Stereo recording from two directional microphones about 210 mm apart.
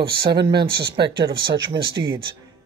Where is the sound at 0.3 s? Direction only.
20° right (ahead or behind).